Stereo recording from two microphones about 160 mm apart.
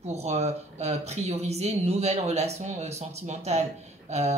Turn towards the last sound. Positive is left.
turn(degrees=-45)  # may be behind; listen again after turning